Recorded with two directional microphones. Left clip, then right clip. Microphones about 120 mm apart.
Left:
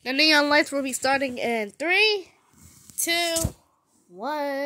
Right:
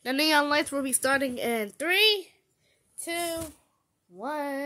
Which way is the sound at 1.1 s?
75° right (ahead or behind).